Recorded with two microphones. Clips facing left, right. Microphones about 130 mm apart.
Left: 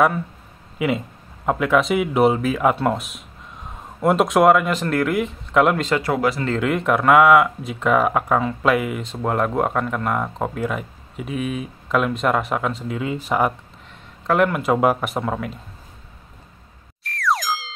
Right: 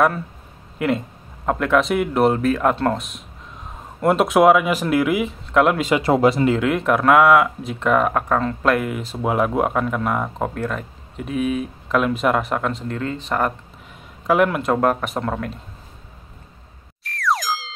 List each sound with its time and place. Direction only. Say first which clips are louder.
0.7 s speech: right 1 dB; 5° left (ahead or behind)
6.0 s speech: right 5 dB; 25° right (ahead or behind)
6.6 s speech: right 1 dB; centre (ahead or behind)
14.2 s speech: right 1 dB; centre (ahead or behind)
17.0 s music: even; centre (ahead or behind)